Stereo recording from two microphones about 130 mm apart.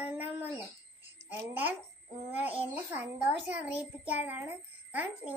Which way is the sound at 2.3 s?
10° right (ahead or behind).